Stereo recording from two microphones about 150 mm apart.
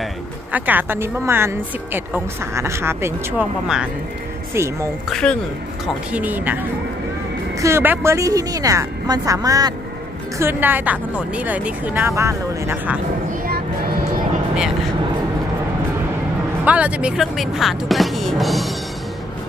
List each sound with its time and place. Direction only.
0.5 s speech: 10° right (ahead or behind)
5.1 s speech: 5° left (ahead or behind)
6.1 s speech: 10° right (ahead or behind)
7.6 s a woman's voice: 15° right (ahead or behind)
10.4 s speech: 15° right (ahead or behind)
13.5 s vehicle: 90° right
16.6 s speech: 10° right (ahead or behind)